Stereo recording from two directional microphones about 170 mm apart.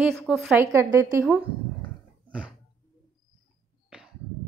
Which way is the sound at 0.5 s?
15° right (ahead or behind).